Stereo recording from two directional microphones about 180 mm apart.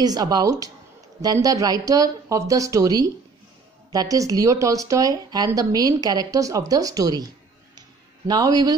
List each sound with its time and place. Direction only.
0.0 s a woman's voice: 20° right (ahead or behind)